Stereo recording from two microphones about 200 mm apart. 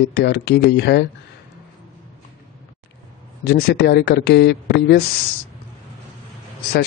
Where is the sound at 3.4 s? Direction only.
55° left (ahead or behind).